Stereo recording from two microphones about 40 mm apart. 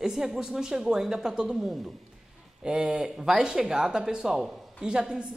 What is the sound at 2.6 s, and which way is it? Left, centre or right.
A woman's voice, right.